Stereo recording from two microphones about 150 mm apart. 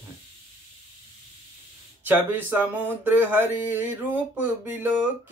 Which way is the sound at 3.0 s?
15° right (ahead or behind).